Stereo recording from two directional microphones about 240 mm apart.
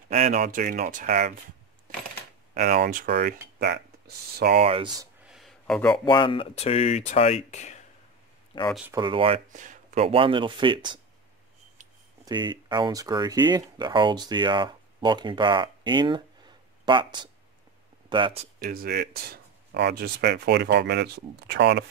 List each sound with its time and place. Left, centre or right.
0.1 s speech: right
2.5 s speech: right
4.6 s speech: right
5.3 s a sound: centre
6.0 s speech: left
8.7 s speech: centre
9.0 s speech: right
12.3 s speech: centre
18.6 s speech: right